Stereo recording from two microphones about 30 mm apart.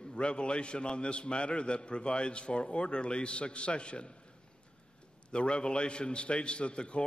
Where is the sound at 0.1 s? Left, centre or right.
Left.